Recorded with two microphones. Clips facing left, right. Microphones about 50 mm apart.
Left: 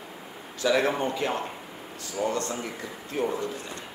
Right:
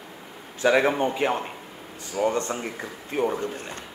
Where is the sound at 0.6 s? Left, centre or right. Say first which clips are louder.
Right 4 dB; right.